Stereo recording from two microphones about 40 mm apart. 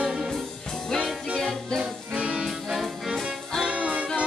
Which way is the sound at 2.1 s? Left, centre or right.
Right.